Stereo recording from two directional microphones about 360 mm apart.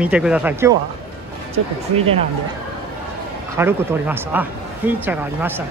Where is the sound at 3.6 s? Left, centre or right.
Centre.